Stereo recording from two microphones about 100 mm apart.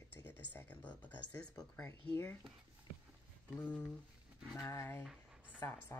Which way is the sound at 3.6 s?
15° left (ahead or behind).